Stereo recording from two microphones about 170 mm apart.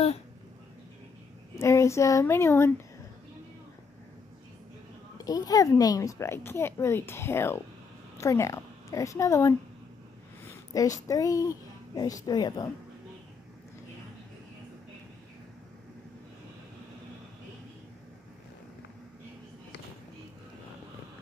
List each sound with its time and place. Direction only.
1.6 s a woman's voice: 15° left (ahead or behind)
5.1 s a woman's voice: 20° left (ahead or behind)